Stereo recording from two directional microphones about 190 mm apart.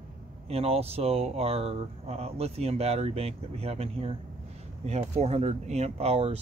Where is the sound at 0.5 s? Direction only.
30° right (ahead or behind).